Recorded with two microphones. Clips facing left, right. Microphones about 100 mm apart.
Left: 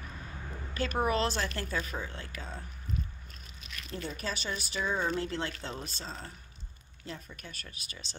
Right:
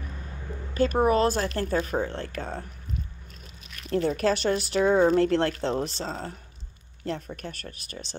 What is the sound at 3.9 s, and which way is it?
Speech, 70° right (ahead or behind).